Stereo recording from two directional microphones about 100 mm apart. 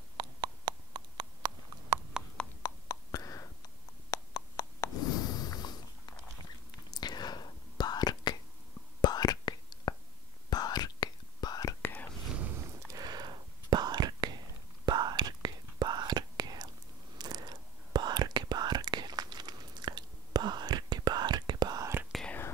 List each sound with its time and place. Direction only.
0.2 s a sound: 45° right (ahead or behind)
2.1 s horse: 10° right (ahead or behind)
2.6 s whispering: 35° left (ahead or behind)
4.1 s a sound: 35° left (ahead or behind)
6.9 s whispering: 45° left (ahead or behind)
11.8 s whispering: 20° left (ahead or behind)
12.8 s whispering: 40° right (ahead or behind)